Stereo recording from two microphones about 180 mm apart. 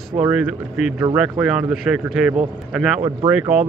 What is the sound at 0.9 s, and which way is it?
Speech, 20° right (ahead or behind).